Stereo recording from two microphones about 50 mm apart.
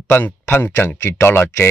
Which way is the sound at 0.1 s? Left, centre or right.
Left.